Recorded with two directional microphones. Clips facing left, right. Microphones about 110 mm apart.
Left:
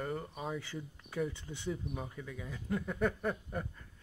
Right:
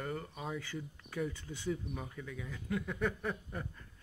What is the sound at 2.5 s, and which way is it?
Speech, 25° left (ahead or behind).